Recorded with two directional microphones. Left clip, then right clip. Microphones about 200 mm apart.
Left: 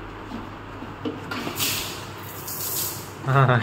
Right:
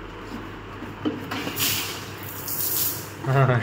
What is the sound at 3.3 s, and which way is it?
Speech, 15° left (ahead or behind).